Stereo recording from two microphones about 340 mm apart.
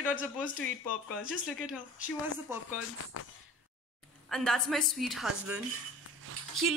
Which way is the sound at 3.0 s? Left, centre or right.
Left.